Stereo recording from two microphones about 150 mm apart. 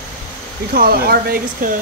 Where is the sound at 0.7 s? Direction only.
80° right.